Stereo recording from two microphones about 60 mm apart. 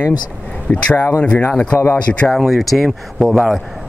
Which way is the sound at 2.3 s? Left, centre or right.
Centre.